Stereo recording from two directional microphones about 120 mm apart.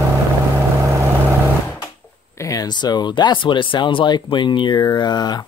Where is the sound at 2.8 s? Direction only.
35° left (ahead or behind).